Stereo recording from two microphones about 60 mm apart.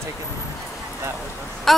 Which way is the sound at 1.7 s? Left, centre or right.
Centre.